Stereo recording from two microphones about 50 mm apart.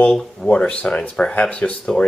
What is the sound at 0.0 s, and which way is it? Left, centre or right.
Speech, left.